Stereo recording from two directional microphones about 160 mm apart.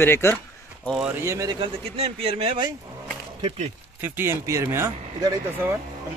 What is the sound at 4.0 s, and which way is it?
Speech, 15° right (ahead or behind).